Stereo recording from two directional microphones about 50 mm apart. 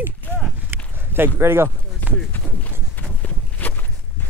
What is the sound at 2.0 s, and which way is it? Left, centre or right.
Run, left.